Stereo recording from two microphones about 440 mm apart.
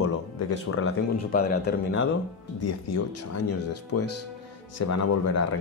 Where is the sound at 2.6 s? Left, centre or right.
Left.